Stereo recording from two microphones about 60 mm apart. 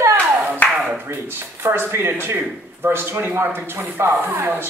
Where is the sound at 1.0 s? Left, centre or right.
Right.